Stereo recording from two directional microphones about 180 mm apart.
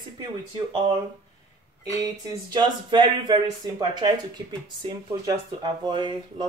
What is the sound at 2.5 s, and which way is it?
Speech, 25° right (ahead or behind).